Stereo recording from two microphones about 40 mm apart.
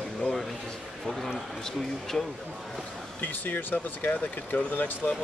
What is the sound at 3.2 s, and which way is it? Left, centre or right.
Speech, left.